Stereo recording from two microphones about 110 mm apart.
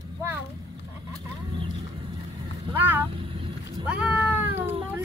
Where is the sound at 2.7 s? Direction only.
20° right (ahead or behind).